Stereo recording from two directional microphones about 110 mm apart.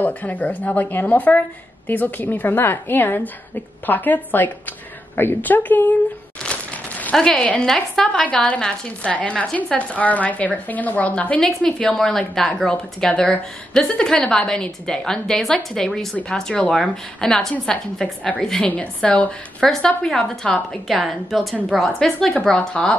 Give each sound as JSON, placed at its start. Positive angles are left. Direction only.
{"t": 0.0, "sound": "a woman's voice", "side_deg": 15}